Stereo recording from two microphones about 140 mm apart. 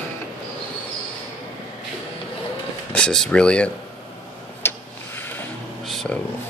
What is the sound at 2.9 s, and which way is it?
Speech, 5° left (ahead or behind).